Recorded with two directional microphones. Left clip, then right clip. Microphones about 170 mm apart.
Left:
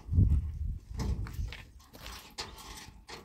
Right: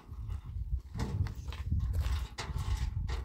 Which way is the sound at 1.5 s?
65° right (ahead or behind).